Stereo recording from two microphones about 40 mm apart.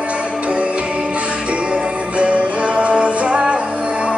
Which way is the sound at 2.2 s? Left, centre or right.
Right.